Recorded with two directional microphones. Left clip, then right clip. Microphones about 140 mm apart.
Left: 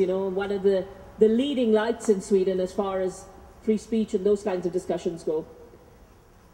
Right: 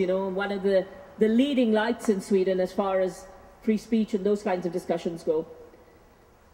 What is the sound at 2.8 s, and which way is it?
Speech, 25° right (ahead or behind).